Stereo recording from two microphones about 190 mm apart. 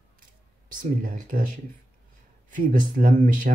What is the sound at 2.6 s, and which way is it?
Speech, 45° right (ahead or behind).